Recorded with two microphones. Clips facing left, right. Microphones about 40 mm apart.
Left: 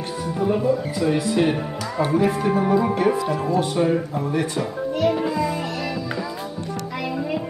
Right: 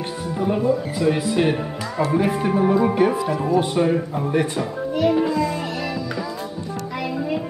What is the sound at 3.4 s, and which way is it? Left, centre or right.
Speech, right.